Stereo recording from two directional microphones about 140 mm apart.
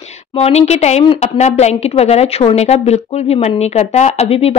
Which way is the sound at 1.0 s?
40° left (ahead or behind).